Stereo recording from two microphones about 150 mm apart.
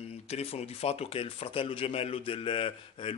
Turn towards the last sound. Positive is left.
turn(degrees=35)  # may be behind; listen again after turning